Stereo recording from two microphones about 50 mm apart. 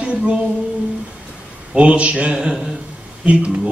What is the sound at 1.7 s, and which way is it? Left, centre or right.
Mantra, right.